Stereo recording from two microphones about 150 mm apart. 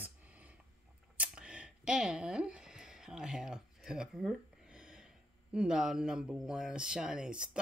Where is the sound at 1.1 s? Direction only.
10° right (ahead or behind).